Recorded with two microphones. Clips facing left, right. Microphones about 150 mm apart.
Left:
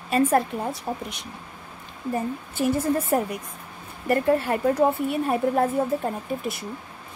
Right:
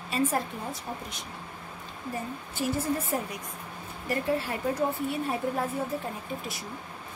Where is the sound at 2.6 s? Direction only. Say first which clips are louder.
Left 7 dB; 60° left (ahead or behind).